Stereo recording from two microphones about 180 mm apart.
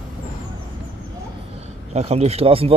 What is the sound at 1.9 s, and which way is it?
Speech, 35° right (ahead or behind).